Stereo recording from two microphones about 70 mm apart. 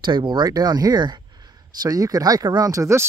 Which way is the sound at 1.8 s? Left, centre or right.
Right.